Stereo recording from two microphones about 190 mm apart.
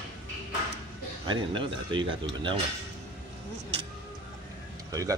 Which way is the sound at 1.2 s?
25° right (ahead or behind).